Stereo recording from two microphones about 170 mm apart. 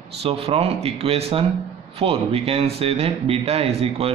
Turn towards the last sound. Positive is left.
turn(degrees=-35)  # may be behind; listen again after turning